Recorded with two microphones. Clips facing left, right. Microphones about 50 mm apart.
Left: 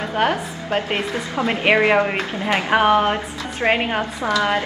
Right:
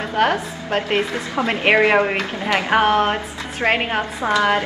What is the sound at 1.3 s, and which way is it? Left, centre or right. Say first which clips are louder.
Speech: even; right.